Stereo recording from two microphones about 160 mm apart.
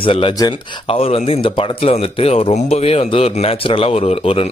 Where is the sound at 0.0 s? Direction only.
35° left (ahead or behind).